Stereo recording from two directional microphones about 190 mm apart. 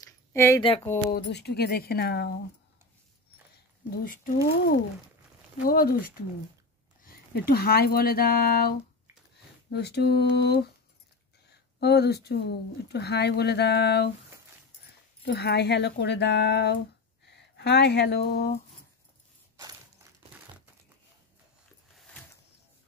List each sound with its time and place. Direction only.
0.3 s speech: 15° left (ahead or behind)
0.6 s speech: 30° left (ahead or behind)
1.1 s speech: 60° left (ahead or behind)
3.9 s speech: 45° left (ahead or behind)
7.0 s speech: 55° left (ahead or behind)
11.8 s speech: 60° left (ahead or behind)
15.2 s speech: 60° left (ahead or behind)
17.3 s a sound: 60° left (ahead or behind)